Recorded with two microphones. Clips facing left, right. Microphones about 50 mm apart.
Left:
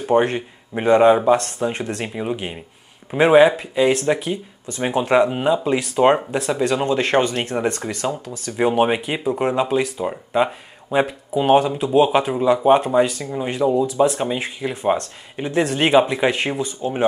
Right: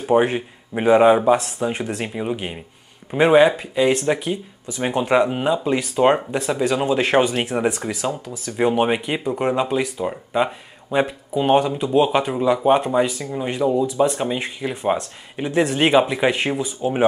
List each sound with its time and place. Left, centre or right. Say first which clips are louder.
0.0 s speech: even; centre